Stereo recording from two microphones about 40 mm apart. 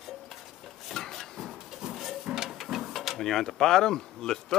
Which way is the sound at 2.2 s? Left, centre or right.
Centre.